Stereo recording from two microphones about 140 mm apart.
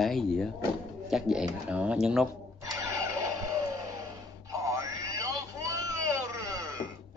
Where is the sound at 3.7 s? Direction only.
25° right (ahead or behind).